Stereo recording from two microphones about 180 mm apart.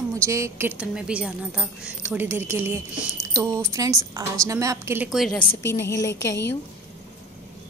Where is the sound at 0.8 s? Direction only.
5° right (ahead or behind).